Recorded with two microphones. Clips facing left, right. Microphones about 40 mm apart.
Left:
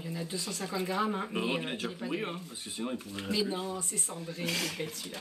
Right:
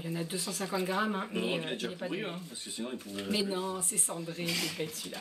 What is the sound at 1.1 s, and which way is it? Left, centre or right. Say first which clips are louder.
Speech: left 1 dB; centre.